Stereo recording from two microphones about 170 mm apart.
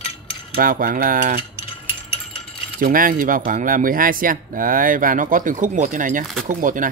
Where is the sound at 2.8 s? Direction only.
55° right (ahead or behind).